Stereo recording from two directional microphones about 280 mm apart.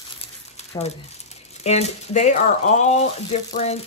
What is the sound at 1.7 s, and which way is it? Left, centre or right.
Speech, left.